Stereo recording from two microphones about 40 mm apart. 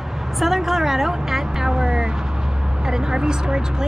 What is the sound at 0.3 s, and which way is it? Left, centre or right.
A woman's voice, centre.